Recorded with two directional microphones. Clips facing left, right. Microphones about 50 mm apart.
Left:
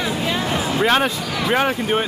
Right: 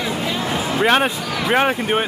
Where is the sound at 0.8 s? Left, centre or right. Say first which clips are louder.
Right 2 dB; right.